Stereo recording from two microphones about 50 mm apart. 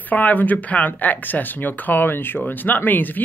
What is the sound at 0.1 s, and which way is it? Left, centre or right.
Speech, left.